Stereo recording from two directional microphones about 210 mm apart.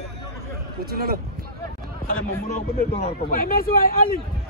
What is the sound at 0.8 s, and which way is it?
Speech, 45° right (ahead or behind).